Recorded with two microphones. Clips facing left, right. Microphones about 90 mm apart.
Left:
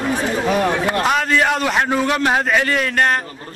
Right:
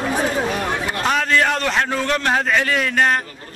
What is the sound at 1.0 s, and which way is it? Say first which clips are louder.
A man's voice: right 1 dB; 5° left (ahead or behind).